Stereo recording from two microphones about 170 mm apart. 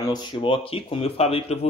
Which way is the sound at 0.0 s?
25° left (ahead or behind).